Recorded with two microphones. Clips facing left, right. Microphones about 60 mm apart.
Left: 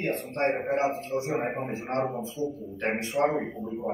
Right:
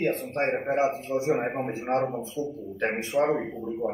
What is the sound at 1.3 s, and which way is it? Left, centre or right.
A man's voice, centre.